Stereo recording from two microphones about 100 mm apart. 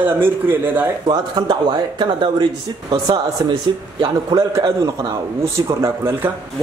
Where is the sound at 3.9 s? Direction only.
50° right (ahead or behind).